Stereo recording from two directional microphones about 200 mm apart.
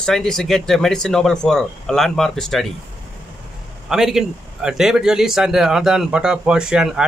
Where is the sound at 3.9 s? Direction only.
Centre (ahead or behind).